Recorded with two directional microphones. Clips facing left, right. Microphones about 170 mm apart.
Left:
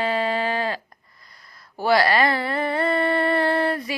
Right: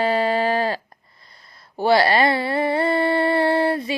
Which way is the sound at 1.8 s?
30° right (ahead or behind).